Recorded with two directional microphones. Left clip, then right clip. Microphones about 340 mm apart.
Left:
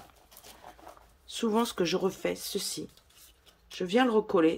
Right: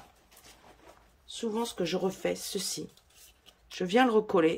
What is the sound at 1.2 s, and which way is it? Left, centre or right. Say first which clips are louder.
Speech: left 4 dB; centre.